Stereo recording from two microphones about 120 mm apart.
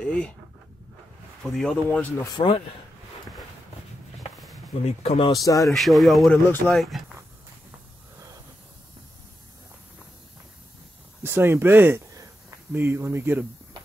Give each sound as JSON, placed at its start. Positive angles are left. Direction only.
{"t": 0.0, "sound": "speech", "side_deg": 10}
{"t": 1.4, "sound": "speech", "side_deg": 5}
{"t": 2.3, "sound": "speech", "side_deg": 45}
{"t": 4.8, "sound": "speech", "side_deg": 60}
{"t": 5.2, "sound": "speech", "side_deg": 30}
{"t": 5.7, "sound": "speech", "side_deg": 0}
{"t": 11.2, "sound": "speech", "side_deg": -20}